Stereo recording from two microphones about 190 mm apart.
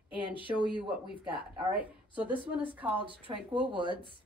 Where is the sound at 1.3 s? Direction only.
10° right (ahead or behind).